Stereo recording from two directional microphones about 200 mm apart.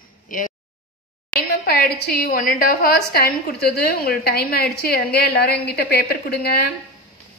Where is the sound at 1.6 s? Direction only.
50° left (ahead or behind).